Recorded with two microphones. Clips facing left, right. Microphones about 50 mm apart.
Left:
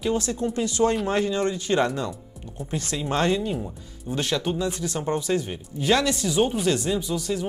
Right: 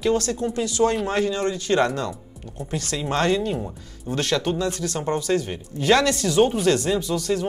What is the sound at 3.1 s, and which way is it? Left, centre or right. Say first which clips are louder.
Speech: right 2 dB; right.